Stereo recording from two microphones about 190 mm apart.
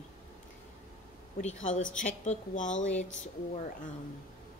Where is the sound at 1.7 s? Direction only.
90° left.